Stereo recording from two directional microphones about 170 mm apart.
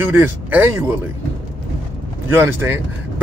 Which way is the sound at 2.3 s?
15° right (ahead or behind).